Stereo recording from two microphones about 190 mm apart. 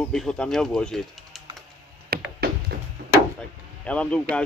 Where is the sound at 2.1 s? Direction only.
55° right (ahead or behind).